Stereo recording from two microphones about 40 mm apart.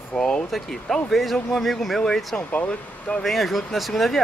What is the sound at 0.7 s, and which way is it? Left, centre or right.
Speech, centre.